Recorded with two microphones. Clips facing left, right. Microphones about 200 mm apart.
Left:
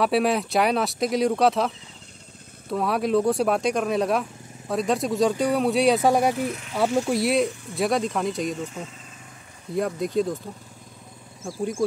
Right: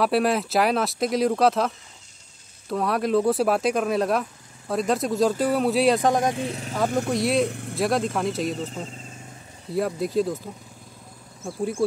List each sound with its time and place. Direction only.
0.0 s speech: centre (ahead or behind)
2.7 s speech: centre (ahead or behind)
6.3 s speech: 30° right (ahead or behind)
7.1 s speech: centre (ahead or behind)
7.4 s speech: 65° right (ahead or behind)
7.7 s speech: centre (ahead or behind)
9.8 s speech: 5° right (ahead or behind)